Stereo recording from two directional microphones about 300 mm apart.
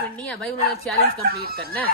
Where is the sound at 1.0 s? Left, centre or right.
Right.